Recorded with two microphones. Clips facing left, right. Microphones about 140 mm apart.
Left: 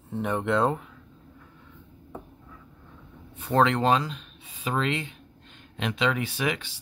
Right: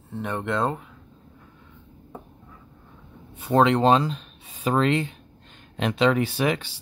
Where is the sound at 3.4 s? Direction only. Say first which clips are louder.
Right 3 dB; 15° right (ahead or behind).